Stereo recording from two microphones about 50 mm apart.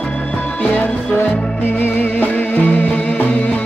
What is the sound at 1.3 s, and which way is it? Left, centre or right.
Music, left.